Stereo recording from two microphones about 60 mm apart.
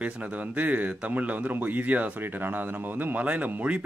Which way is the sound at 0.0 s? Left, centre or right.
Right.